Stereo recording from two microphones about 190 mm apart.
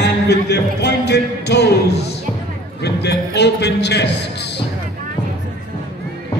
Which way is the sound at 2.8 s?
60° left (ahead or behind).